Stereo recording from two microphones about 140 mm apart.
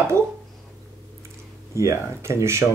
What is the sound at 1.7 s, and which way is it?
Speech, 20° right (ahead or behind).